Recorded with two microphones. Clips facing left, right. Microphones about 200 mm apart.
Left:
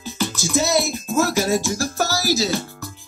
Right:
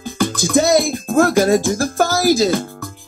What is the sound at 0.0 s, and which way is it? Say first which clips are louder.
Music: right 6 dB; 55° right (ahead or behind).